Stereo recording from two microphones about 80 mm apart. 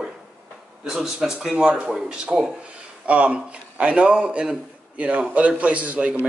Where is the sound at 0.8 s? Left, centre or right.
Centre.